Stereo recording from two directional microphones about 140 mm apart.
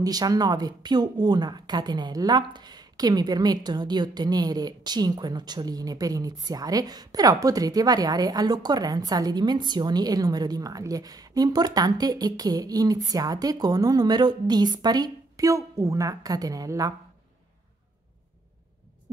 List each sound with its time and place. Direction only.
0.0 s speech: 25° right (ahead or behind)